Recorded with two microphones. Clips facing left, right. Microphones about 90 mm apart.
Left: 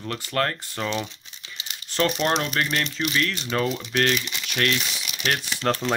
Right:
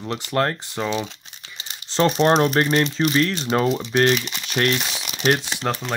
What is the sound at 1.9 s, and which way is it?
Speech, 30° right (ahead or behind).